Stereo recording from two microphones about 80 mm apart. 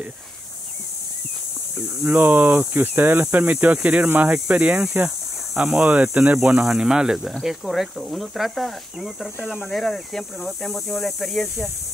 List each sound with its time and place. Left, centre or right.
2.0 s speech: right; by 11.6 s centre